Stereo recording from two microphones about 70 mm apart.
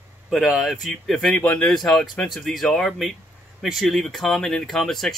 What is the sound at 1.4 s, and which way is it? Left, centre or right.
Speech, centre.